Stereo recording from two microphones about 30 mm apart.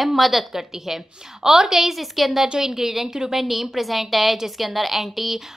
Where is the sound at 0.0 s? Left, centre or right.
Centre.